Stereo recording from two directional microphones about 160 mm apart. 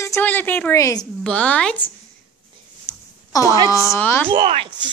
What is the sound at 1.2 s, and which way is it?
Speech, 10° left (ahead or behind).